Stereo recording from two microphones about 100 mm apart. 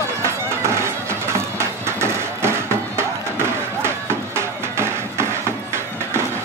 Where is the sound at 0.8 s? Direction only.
25° right (ahead or behind).